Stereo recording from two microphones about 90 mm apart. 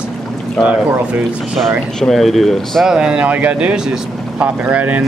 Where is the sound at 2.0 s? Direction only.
5° left (ahead or behind).